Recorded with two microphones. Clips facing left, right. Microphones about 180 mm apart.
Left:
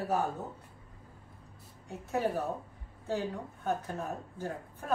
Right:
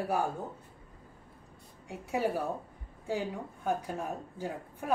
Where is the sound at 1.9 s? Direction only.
10° right (ahead or behind).